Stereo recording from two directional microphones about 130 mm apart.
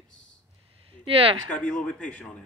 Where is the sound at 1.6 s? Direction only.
10° left (ahead or behind).